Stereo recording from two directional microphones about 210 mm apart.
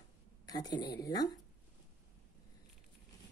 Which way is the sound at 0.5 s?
20° left (ahead or behind).